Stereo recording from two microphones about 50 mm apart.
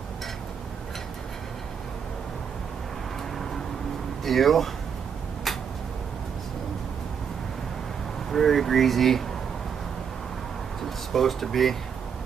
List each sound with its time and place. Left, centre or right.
4.2 s speech: centre
8.3 s speech: centre
10.8 s a sound: centre